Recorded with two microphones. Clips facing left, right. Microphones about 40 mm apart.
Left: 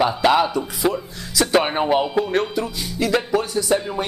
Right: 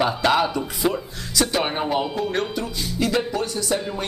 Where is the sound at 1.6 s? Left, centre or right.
Centre.